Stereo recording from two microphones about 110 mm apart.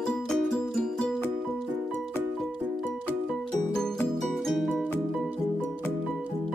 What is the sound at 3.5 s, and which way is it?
Music, 5° left (ahead or behind).